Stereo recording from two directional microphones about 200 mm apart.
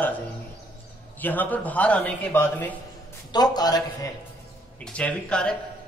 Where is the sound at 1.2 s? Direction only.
10° left (ahead or behind).